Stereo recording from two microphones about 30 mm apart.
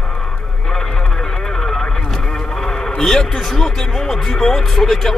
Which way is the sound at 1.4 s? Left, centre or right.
Centre.